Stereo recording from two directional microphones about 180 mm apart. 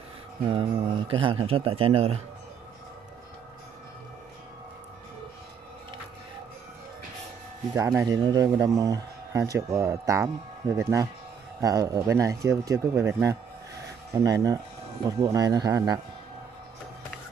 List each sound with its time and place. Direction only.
0.5 s a man's voice: 25° right (ahead or behind)
7.7 s speech: 15° right (ahead or behind)